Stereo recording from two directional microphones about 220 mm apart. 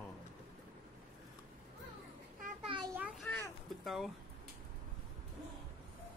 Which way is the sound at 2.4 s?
25° right (ahead or behind).